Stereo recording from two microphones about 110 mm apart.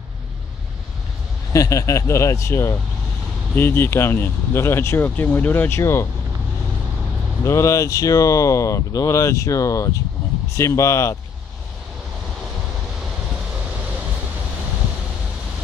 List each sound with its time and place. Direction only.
1.5 s speech: 30° left (ahead or behind)
7.4 s speech: 25° left (ahead or behind)